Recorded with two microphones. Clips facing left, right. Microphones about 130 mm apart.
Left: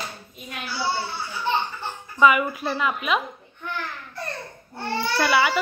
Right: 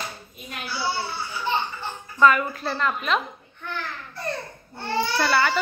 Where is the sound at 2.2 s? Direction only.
10° left (ahead or behind).